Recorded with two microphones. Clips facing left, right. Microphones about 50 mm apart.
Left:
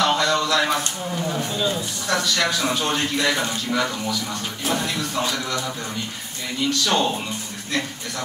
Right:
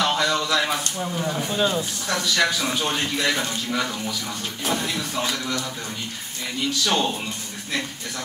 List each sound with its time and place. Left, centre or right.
0.0 s a sound: centre
1.5 s speech: right
2.0 s a man's voice: centre
6.6 s a man's voice: centre